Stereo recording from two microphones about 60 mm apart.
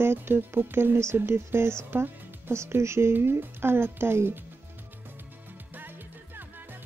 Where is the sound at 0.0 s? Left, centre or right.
Right.